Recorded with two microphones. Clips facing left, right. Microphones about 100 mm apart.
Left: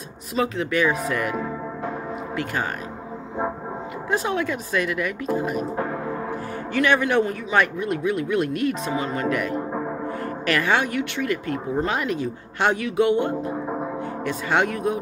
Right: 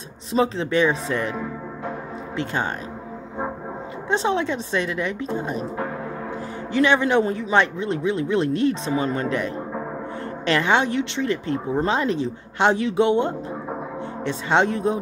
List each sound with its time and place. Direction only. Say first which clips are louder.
0.3 s a man's voice: right 3 dB; 30° right (ahead or behind)
2.3 s a man's voice: right 2 dB; 25° right (ahead or behind)
4.1 s a man's voice: right 2 dB; 25° right (ahead or behind)
6.7 s a man's voice: right 2 dB; 20° right (ahead or behind)